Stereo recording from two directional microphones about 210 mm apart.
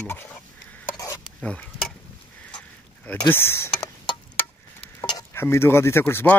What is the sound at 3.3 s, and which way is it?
Speech, 10° left (ahead or behind).